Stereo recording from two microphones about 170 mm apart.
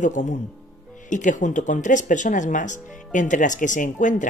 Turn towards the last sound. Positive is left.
turn(degrees=50)  # may be behind; listen again after turning